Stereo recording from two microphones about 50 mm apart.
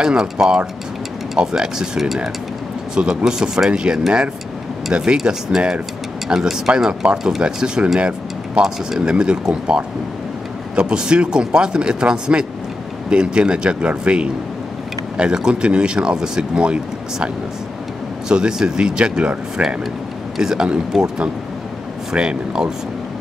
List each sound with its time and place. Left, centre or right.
0.2 s speech: centre
18.3 s speech: centre